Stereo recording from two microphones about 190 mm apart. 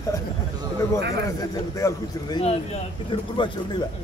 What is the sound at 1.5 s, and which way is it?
Speech, 20° left (ahead or behind).